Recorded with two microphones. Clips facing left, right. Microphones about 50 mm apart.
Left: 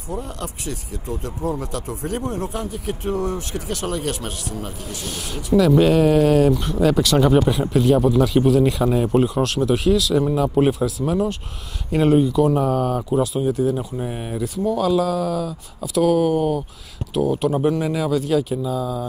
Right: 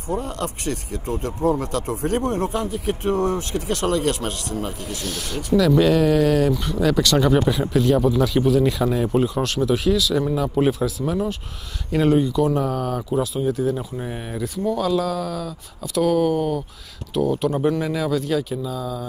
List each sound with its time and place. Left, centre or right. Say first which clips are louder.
0.1 s speech: right 4 dB; right
5.0 s speech: right 2 dB; centre